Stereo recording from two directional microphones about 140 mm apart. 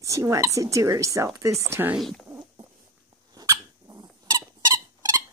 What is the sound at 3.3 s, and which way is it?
Dog, 25° right (ahead or behind).